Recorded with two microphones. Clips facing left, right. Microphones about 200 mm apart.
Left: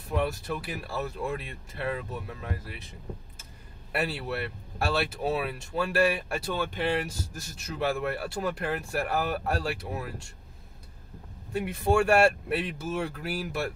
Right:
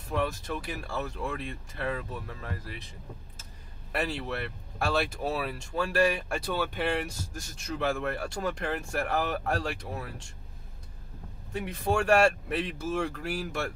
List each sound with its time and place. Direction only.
0.1 s speech: 5° left (ahead or behind)
3.9 s speech: 5° left (ahead or behind)
11.5 s speech: 10° left (ahead or behind)